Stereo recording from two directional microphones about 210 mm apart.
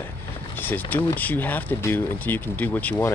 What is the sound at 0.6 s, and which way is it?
Speech, 10° left (ahead or behind).